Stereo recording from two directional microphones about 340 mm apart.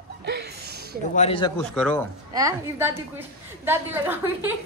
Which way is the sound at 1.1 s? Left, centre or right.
Centre.